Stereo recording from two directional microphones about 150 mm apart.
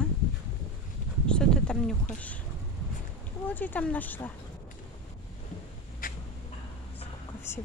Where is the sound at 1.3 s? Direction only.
5° left (ahead or behind).